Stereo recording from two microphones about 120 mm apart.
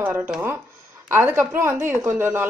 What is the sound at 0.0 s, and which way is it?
A woman's voice, 20° right (ahead or behind).